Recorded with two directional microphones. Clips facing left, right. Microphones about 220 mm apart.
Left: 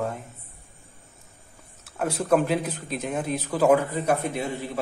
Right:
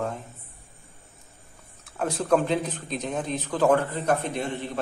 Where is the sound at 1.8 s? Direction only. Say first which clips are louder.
Left 1 dB; 5° left (ahead or behind).